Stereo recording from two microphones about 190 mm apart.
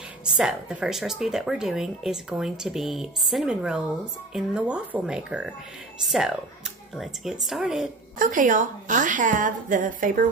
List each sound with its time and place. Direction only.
0.2 s speech: 5° right (ahead or behind)
8.2 s a woman's voice: 45° right (ahead or behind)